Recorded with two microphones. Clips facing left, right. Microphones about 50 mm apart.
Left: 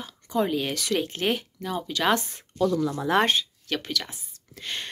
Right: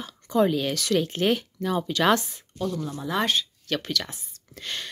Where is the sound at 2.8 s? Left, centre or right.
Left.